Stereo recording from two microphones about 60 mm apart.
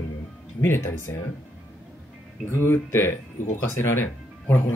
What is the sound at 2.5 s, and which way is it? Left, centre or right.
Speech, left.